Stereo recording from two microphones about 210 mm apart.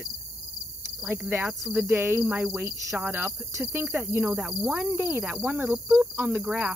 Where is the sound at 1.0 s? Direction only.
5° right (ahead or behind).